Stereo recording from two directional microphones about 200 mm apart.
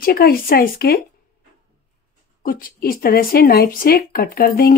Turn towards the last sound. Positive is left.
turn(degrees=45)  # may be behind; listen again after turning